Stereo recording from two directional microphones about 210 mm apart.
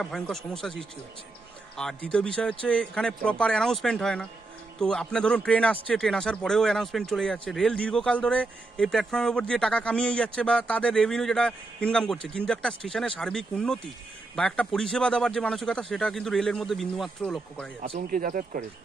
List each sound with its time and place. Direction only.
0.0 s speech: centre (ahead or behind)
17.8 s speech: 35° right (ahead or behind)